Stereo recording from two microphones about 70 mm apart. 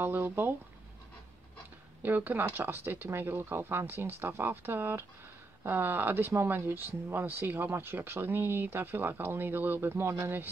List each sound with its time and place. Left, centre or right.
0.0 s speech: right
2.0 s speech: right